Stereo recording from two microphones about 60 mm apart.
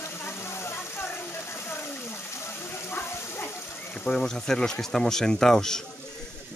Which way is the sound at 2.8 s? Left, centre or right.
Left.